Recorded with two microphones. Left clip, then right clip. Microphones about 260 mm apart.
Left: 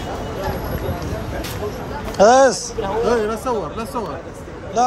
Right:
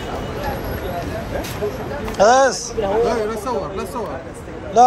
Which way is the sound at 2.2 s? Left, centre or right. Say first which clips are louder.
Left 1 dB; left.